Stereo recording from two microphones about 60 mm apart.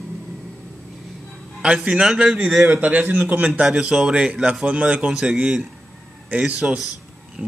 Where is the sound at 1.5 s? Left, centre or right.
Centre.